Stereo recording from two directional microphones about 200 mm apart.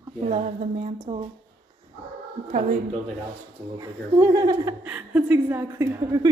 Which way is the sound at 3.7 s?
20° right (ahead or behind).